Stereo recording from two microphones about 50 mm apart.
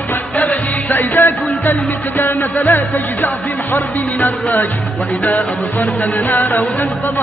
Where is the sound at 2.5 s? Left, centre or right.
Left.